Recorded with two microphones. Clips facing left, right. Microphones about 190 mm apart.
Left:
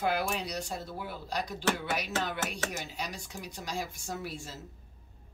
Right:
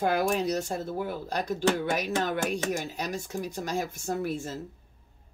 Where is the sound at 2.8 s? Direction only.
50° right (ahead or behind).